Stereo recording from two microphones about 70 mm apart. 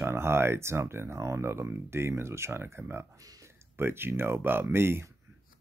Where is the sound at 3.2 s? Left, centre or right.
Right.